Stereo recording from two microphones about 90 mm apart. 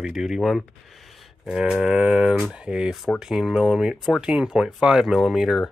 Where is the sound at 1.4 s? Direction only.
5° right (ahead or behind).